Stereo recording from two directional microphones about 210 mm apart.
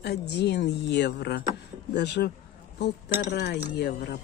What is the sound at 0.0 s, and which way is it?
Speech, 50° left (ahead or behind).